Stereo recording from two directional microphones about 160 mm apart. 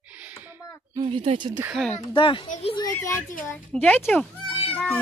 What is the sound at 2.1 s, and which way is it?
Speech, 30° left (ahead or behind).